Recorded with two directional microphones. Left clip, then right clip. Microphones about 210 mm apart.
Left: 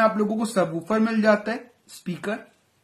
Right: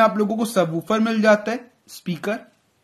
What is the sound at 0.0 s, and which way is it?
Speech, 30° right (ahead or behind).